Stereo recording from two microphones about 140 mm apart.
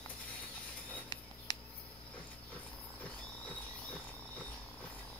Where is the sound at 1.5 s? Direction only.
30° left (ahead or behind).